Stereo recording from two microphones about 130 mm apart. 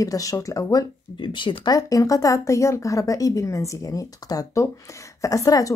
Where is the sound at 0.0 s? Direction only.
25° left (ahead or behind).